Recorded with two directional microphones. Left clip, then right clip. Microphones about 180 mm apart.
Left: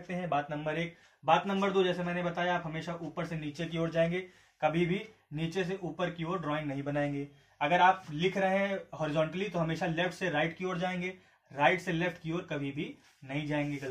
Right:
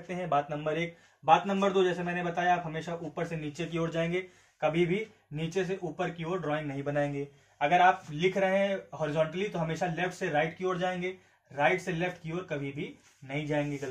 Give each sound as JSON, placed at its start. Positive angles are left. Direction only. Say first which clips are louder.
{"t": 0.1, "sound": "speech", "louder": "right 3 dB", "side_deg": -30}
{"t": 3.7, "sound": "speech", "louder": "left 1 dB", "side_deg": -25}
{"t": 4.8, "sound": "speech", "louder": "right 3 dB", "side_deg": -15}